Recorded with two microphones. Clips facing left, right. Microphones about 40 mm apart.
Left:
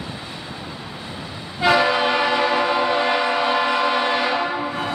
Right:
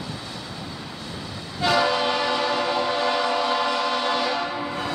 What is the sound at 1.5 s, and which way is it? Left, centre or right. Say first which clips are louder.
Train: left 4 dB; left.